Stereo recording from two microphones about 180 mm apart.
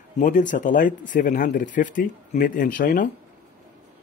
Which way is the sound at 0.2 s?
45° left (ahead or behind).